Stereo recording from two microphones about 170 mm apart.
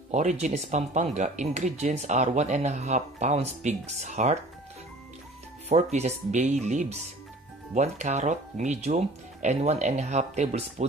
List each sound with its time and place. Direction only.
0.1 s speech: 45° right (ahead or behind)
5.7 s speech: 40° right (ahead or behind)